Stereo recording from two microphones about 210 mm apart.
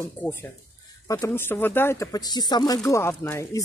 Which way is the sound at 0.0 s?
10° left (ahead or behind).